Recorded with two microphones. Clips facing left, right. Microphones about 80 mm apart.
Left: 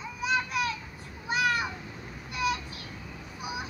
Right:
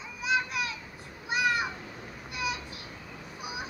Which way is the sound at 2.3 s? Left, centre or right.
Centre.